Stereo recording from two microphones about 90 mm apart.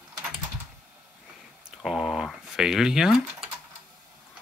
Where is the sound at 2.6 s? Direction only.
5° right (ahead or behind).